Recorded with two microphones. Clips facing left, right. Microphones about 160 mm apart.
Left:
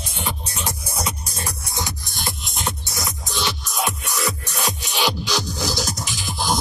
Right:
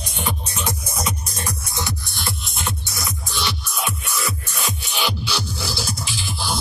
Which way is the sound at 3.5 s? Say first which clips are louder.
Left 2 dB; 40° left (ahead or behind).